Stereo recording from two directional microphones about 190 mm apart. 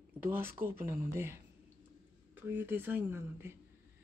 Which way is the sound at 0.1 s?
10° right (ahead or behind).